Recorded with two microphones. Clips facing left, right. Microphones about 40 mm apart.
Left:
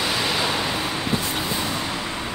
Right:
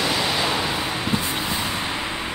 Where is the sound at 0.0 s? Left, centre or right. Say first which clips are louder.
Right 1 dB; centre; by 2.0 s right.